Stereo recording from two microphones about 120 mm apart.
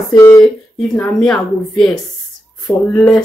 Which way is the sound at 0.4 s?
5° left (ahead or behind).